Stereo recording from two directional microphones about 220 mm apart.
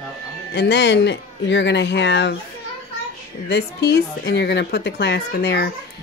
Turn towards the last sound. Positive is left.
turn(degrees=50)  # may be behind; listen again after turning